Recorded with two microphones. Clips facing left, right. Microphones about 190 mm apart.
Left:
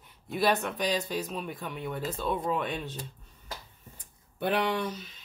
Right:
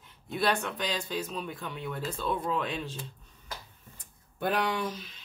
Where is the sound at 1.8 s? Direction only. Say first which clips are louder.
Left 1 dB; 15° left (ahead or behind).